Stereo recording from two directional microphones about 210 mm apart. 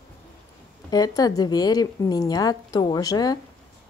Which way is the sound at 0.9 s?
20° left (ahead or behind).